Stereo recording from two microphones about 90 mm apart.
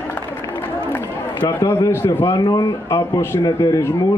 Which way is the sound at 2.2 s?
50° left (ahead or behind).